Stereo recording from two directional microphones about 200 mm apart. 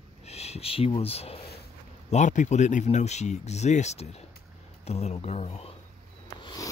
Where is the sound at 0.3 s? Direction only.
30° left (ahead or behind).